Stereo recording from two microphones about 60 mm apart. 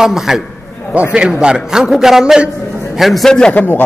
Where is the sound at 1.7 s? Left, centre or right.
Centre.